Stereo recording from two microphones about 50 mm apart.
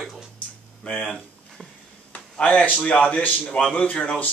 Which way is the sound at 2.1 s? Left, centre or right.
Left.